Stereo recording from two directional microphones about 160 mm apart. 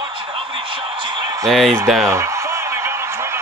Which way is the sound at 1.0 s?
25° right (ahead or behind).